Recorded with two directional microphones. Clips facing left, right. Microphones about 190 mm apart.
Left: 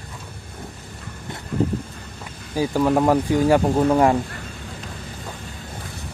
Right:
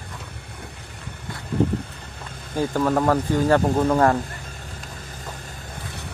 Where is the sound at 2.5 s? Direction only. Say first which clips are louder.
Left 2 dB; 10° left (ahead or behind).